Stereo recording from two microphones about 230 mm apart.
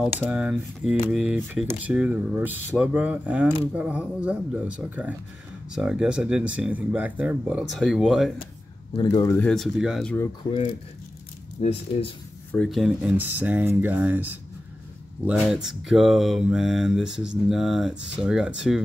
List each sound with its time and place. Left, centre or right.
0.2 s speech: centre
8.9 s speech: centre
11.6 s speech: left
12.5 s speech: centre